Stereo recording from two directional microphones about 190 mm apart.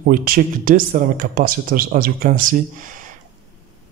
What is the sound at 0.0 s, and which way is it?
Speech, 50° right (ahead or behind).